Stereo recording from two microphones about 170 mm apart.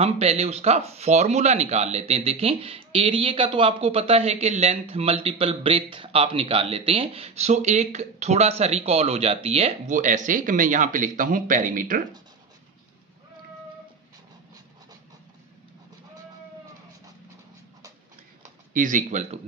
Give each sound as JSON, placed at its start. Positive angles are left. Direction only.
{"t": 0.0, "sound": "speech", "side_deg": -40}
{"t": 18.7, "sound": "speech", "side_deg": -50}